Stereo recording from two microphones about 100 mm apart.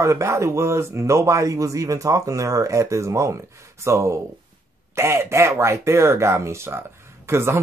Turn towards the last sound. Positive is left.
turn(degrees=-25)  # may be behind; listen again after turning